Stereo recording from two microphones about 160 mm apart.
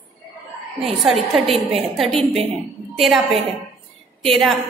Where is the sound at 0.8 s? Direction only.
Centre (ahead or behind).